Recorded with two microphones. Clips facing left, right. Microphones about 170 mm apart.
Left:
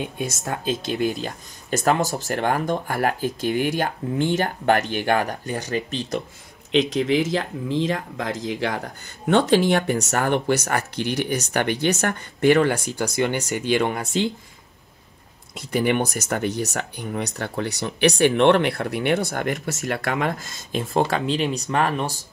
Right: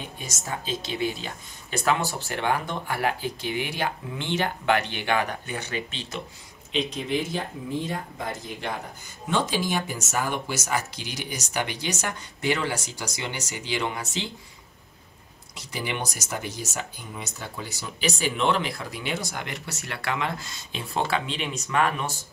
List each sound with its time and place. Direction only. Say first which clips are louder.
0.0 s speech: left 9 dB; 60° left (ahead or behind); by 6.2 s 40° left (ahead or behind)
6.7 s speech: left 8 dB; 90° left; by 14.3 s 55° left (ahead or behind)
15.5 s speech: left 11 dB; 55° left (ahead or behind); by 22.1 s 35° left (ahead or behind)